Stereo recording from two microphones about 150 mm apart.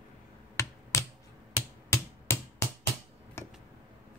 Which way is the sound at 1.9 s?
20° left (ahead or behind).